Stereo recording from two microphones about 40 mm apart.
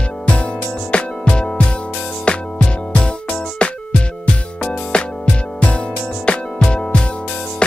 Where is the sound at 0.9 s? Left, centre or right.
Left.